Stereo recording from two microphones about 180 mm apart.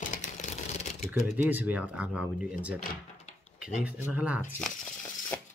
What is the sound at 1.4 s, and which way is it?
Speech, 10° right (ahead or behind).